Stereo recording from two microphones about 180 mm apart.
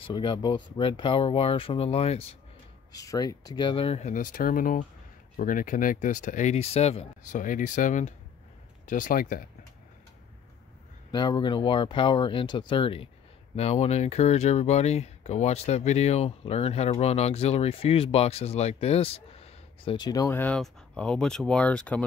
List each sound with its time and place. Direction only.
0.0 s speech: 25° left (ahead or behind)
2.9 s speech: 20° left (ahead or behind); by 9.4 s 50° left (ahead or behind)
11.1 s speech: 25° left (ahead or behind); by 22.0 s 5° left (ahead or behind)